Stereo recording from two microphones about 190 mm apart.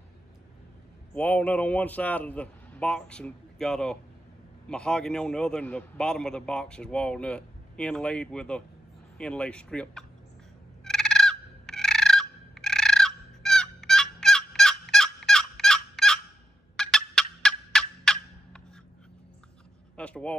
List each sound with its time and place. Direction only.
1.1 s a man's voice: 10° left (ahead or behind)
10.8 s fowl: 5° left (ahead or behind)
16.7 s turkey: 5° left (ahead or behind)
20.0 s vehicle: 5° left (ahead or behind)